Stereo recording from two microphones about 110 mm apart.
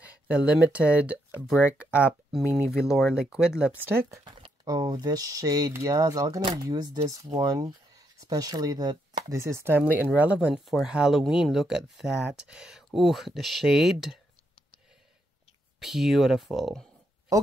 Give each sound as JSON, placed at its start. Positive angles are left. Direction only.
{"t": 0.0, "sound": "speech", "side_deg": -10}
{"t": 3.8, "sound": "chopping", "side_deg": -20}
{"t": 4.2, "sound": "speech", "side_deg": -45}
{"t": 8.2, "sound": "chopping", "side_deg": -35}
{"t": 10.1, "sound": "speech", "side_deg": -10}
{"t": 15.8, "sound": "speech", "side_deg": 0}